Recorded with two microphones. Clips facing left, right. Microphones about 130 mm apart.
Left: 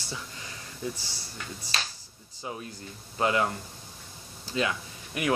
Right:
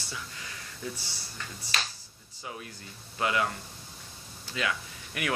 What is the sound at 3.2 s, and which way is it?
Speech, 30° left (ahead or behind).